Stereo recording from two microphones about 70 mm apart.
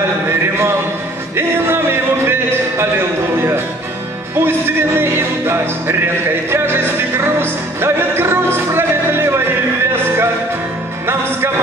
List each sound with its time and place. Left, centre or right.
0.3 s a sound: right
1.3 s music: right
4.4 s music: right